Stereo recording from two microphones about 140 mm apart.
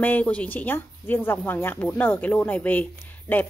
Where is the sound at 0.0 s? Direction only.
10° left (ahead or behind).